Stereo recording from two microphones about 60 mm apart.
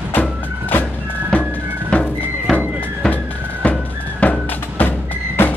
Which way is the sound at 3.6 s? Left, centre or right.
Left.